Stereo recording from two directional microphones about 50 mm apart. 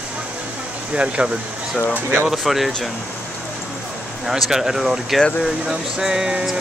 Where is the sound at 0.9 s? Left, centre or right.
Right.